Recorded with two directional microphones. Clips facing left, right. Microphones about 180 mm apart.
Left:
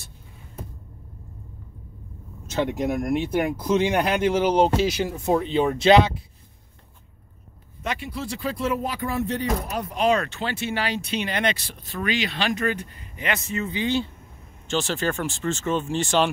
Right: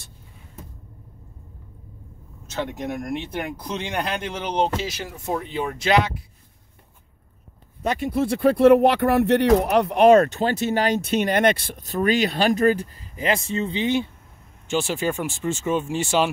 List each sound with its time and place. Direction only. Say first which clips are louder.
2.5 s speech: left 4 dB; 10° left (ahead or behind); by 6.2 s 25° left (ahead or behind)
7.8 s speech: right 8 dB; 45° right (ahead or behind); by 14.0 s 20° right (ahead or behind)
14.7 s speech: right 2 dB; 10° right (ahead or behind)